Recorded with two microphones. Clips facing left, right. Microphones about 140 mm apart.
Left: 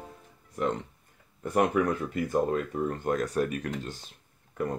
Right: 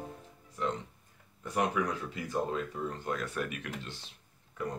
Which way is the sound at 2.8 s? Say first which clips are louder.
Left 7 dB; 50° left (ahead or behind).